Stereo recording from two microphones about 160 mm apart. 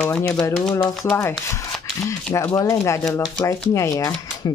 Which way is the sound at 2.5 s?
20° left (ahead or behind).